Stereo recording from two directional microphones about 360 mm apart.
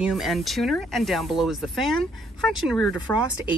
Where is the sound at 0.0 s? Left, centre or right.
Centre.